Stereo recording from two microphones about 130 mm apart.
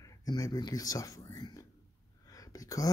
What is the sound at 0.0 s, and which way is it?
Speech, 25° left (ahead or behind).